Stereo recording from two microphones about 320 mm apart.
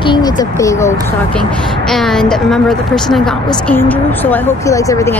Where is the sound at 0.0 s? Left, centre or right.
Centre.